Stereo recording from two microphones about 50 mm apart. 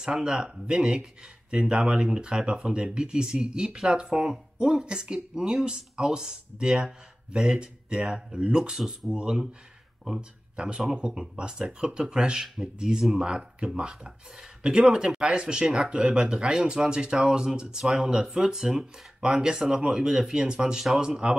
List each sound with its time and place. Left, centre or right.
0.0 s speech: centre
10.5 s a man's voice: centre